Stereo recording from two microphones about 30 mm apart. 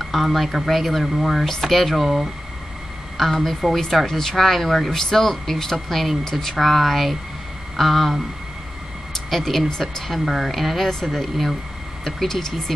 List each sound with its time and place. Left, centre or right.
0.0 s speech: centre
3.2 s speech: centre
9.3 s speech: centre
10.0 s speech: centre